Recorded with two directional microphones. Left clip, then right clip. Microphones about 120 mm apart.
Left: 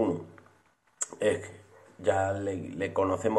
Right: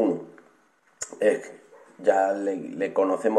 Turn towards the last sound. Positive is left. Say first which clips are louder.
# right 5 dB
turn(degrees=10)  # may be behind; listen again after turning